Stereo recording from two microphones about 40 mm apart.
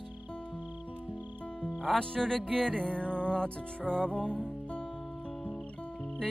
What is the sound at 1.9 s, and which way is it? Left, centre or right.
Music, centre.